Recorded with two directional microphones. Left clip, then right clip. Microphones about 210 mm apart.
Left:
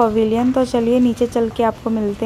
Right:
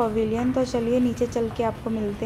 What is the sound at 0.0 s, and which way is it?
A woman's voice, 40° left (ahead or behind).